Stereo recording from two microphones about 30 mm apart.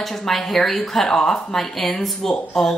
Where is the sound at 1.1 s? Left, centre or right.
Centre.